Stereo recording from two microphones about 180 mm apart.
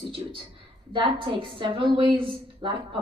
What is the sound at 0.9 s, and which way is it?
A woman's voice, 30° right (ahead or behind).